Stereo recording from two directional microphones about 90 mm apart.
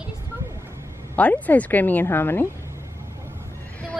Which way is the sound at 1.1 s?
20° left (ahead or behind).